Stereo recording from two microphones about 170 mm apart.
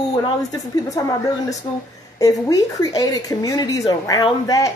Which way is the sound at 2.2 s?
20° left (ahead or behind).